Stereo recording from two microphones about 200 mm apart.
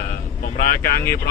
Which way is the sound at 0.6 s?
45° left (ahead or behind).